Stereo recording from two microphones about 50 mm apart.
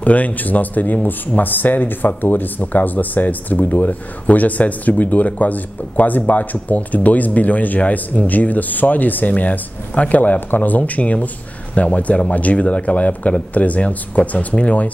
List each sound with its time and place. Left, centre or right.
0.0 s speech: left